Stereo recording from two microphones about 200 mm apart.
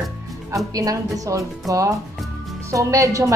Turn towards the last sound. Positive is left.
turn(degrees=-15)  # may be behind; listen again after turning